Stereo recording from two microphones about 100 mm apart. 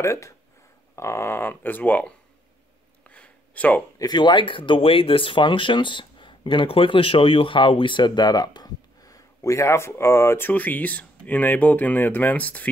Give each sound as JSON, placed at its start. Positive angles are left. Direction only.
{"t": 0.0, "sound": "speech", "side_deg": 30}
{"t": 3.0, "sound": "a sound", "side_deg": 15}
{"t": 4.0, "sound": "speech", "side_deg": 45}